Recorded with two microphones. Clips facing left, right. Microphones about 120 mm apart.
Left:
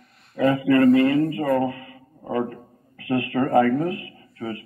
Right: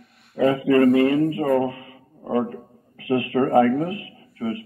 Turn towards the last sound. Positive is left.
turn(degrees=-25)  # may be behind; listen again after turning